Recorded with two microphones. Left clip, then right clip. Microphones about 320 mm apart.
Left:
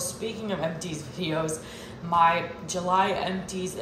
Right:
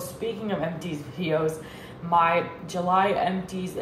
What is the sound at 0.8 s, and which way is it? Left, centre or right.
Speech, centre.